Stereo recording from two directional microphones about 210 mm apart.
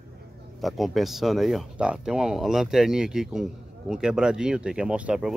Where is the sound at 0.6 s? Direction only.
Centre (ahead or behind).